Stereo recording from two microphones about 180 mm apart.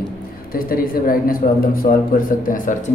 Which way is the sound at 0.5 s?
55° left (ahead or behind).